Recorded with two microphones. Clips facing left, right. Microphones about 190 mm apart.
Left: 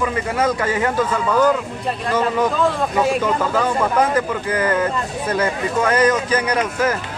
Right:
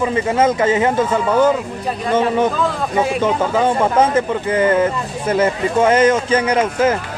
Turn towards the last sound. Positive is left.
turn(degrees=-25)  # may be behind; listen again after turning